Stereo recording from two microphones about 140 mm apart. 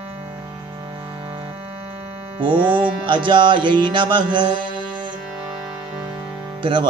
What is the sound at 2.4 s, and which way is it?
Music, 40° right (ahead or behind).